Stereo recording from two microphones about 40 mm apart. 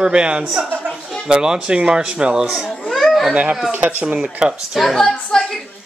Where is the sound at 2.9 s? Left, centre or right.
Centre.